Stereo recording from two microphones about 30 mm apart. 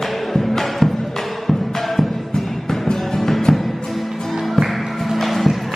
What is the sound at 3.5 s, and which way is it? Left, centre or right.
Music, centre.